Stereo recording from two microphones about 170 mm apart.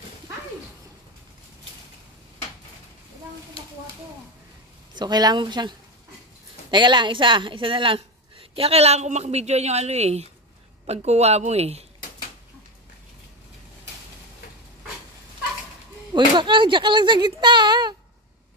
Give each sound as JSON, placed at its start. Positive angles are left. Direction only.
{"t": 4.9, "sound": "a woman's voice", "side_deg": -25}
{"t": 16.1, "sound": "speech", "side_deg": -25}